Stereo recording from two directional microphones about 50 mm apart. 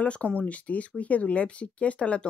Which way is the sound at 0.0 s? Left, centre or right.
Left.